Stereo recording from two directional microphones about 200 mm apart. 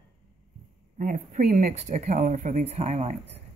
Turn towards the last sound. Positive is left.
turn(degrees=-35)  # may be behind; listen again after turning